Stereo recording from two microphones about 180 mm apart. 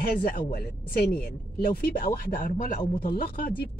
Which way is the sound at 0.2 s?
55° left (ahead or behind).